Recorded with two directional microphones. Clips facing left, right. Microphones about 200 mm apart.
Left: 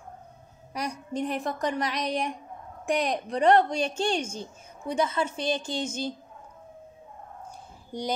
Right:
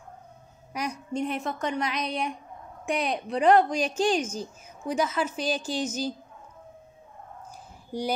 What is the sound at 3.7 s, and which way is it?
Speech, 30° left (ahead or behind).